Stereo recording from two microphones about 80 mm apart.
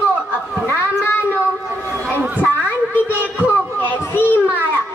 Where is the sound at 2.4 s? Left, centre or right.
Left.